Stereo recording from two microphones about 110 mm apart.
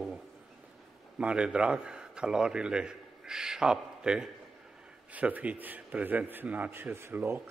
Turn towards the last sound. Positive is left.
turn(degrees=-20)  # may be behind; listen again after turning